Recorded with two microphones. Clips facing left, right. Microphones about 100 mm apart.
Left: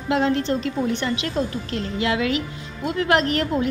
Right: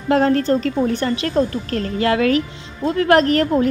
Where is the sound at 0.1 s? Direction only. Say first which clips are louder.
Right 5 dB; 45° right (ahead or behind).